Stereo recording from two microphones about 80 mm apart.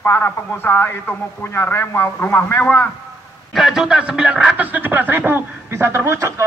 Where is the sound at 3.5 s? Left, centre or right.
Centre.